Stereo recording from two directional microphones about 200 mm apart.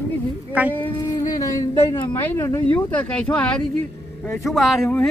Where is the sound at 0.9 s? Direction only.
20° left (ahead or behind).